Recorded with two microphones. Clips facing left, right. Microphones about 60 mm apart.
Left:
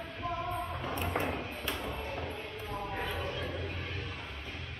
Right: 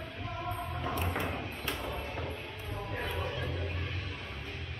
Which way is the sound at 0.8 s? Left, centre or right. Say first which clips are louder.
Right 4 dB; centre.